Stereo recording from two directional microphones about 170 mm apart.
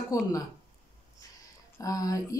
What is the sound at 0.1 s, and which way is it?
Speech, 20° left (ahead or behind).